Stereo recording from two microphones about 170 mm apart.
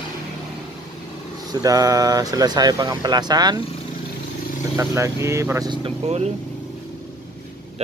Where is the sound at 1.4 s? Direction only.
20° right (ahead or behind).